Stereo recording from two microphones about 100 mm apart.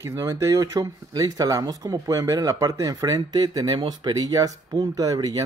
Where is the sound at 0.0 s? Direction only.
35° right (ahead or behind).